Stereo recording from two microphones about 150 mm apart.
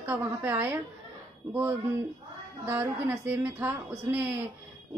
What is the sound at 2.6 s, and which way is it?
A woman's voice, 15° right (ahead or behind).